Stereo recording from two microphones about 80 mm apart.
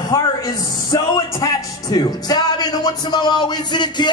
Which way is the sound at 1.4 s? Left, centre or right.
Left.